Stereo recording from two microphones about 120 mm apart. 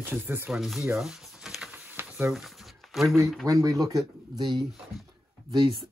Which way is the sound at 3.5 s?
25° right (ahead or behind).